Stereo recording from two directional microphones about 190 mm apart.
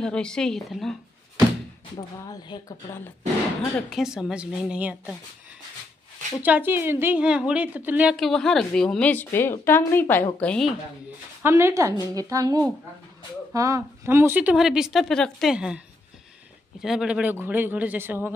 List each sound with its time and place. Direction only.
0.0 s a woman's voice: 5° left (ahead or behind)
2.0 s speech: 25° left (ahead or behind)
3.9 s a woman's voice: 5° right (ahead or behind)
6.4 s a woman's voice: 10° right (ahead or behind)
11.4 s a woman's voice: 15° right (ahead or behind)
16.8 s speech: centre (ahead or behind)